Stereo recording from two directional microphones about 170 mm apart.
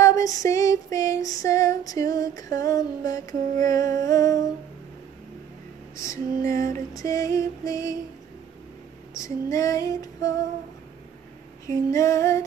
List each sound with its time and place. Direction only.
0.0 s female singing: 20° left (ahead or behind)
5.9 s music: 20° left (ahead or behind)
9.1 s music: 20° left (ahead or behind)
11.6 s music: 20° left (ahead or behind)